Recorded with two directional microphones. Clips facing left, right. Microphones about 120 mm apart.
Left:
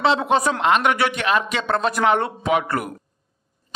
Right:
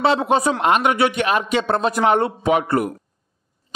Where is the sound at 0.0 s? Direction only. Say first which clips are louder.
Right 1 dB; 25° right (ahead or behind).